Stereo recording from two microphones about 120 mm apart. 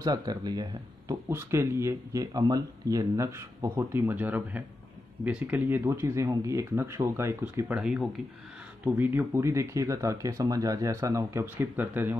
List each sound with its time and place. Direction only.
0.0 s speech: 30° right (ahead or behind)
1.3 s speech: 20° right (ahead or behind)
7.6 s speech: 10° right (ahead or behind)